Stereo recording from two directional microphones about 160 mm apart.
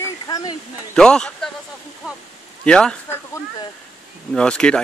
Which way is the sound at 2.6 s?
5° left (ahead or behind).